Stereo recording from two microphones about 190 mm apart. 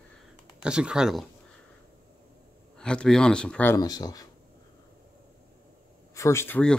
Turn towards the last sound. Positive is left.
turn(degrees=5)  # may be behind; listen again after turning